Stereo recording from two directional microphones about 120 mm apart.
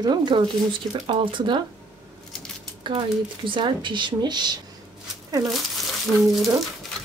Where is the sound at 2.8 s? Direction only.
45° right (ahead or behind).